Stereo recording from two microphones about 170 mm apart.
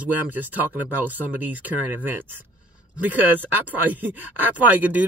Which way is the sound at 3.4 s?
10° right (ahead or behind).